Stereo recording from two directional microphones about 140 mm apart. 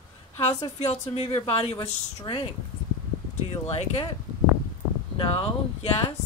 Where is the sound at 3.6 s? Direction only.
45° left (ahead or behind).